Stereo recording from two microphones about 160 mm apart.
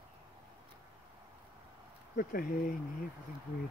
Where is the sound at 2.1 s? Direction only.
65° left (ahead or behind).